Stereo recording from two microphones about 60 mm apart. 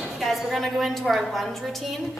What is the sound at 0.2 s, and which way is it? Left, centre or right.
A woman's voice, centre.